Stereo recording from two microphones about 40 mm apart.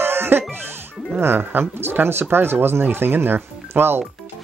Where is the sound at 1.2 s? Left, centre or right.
Right.